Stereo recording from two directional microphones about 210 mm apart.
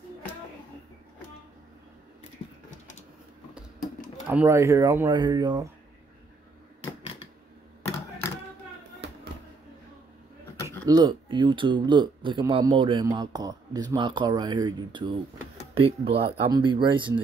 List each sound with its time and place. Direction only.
4.3 s speech: 10° right (ahead or behind)
10.6 s a sound: 10° left (ahead or behind)
10.9 s speech: 20° right (ahead or behind)